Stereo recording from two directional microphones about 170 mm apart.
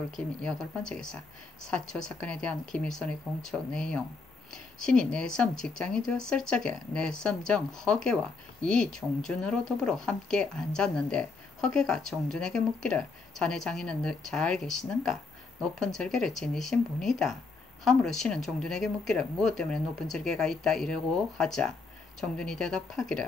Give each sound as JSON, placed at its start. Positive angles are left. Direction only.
{"t": 0.1, "sound": "speech", "side_deg": 5}